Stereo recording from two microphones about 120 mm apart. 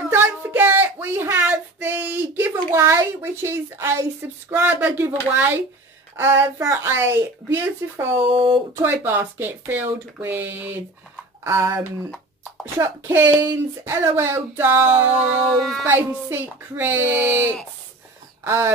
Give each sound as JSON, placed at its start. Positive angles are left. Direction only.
{"t": 0.1, "sound": "child singing", "side_deg": -20}
{"t": 2.7, "sound": "speech", "side_deg": -20}
{"t": 8.3, "sound": "speech", "side_deg": -45}
{"t": 8.8, "sound": "speech", "side_deg": -20}
{"t": 15.4, "sound": "speech", "side_deg": 0}
{"t": 15.8, "sound": "speech", "side_deg": -20}